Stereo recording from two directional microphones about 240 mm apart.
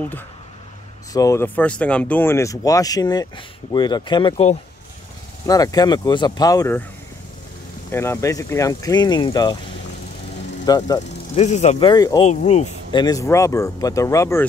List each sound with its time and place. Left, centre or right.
1.1 s speech: centre
7.9 s speech: centre
10.6 s speech: centre
11.4 s speech: left
12.3 s speech: left; by 14.4 s centre